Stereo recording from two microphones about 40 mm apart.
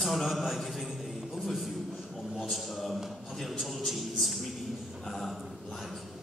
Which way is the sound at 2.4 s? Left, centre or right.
Centre.